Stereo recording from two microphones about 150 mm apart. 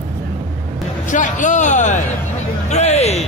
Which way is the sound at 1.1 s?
55° left (ahead or behind).